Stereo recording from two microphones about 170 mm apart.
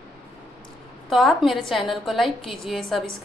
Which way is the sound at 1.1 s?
Centre (ahead or behind).